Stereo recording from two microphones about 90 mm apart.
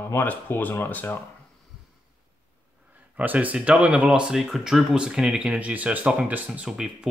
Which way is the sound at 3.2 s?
15° right (ahead or behind).